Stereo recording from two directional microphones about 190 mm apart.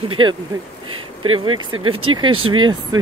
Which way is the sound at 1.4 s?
25° right (ahead or behind).